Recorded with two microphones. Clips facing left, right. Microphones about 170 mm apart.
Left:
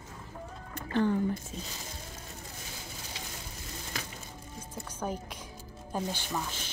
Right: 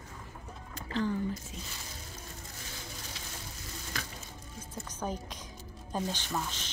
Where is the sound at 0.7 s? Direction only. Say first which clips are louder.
Left 4 dB; 60° left (ahead or behind).